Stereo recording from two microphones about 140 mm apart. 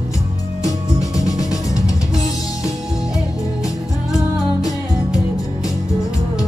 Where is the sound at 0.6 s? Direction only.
25° left (ahead or behind).